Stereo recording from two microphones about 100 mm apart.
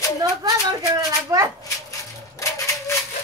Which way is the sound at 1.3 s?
30° right (ahead or behind).